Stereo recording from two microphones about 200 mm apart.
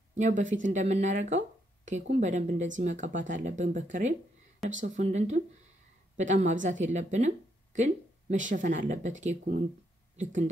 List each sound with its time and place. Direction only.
0.1 s speech: 40° right (ahead or behind)